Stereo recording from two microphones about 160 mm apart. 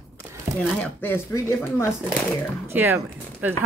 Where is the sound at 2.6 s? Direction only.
15° right (ahead or behind).